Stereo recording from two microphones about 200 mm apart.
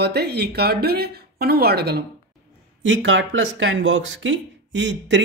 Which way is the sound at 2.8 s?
70° right (ahead or behind).